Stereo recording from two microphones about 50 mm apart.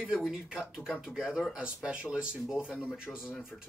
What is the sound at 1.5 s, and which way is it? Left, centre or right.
Speech, centre.